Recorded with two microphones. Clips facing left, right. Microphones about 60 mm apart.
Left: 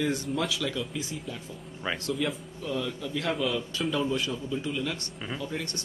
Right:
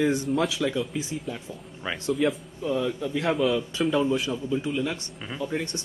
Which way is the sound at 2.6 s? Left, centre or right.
Centre.